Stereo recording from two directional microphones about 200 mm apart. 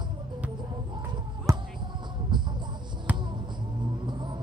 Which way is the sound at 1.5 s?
15° right (ahead or behind).